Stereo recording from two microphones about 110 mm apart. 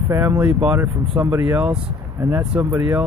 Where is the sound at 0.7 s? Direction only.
25° right (ahead or behind).